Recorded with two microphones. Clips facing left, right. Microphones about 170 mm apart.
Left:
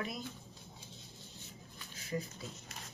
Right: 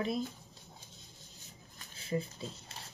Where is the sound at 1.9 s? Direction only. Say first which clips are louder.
Right 4 dB; 30° right (ahead or behind).